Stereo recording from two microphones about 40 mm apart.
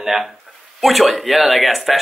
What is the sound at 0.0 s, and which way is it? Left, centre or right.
Speech, centre.